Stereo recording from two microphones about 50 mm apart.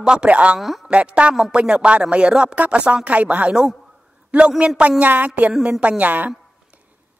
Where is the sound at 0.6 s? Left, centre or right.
Centre.